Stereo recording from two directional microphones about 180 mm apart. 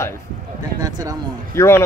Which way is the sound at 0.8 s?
20° right (ahead or behind).